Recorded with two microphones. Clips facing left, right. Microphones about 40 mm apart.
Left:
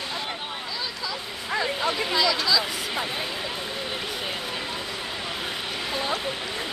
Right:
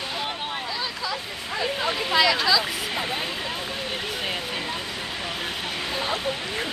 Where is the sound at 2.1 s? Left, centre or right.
Right.